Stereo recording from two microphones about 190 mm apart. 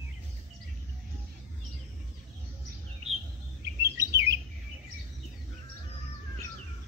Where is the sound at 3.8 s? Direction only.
15° right (ahead or behind).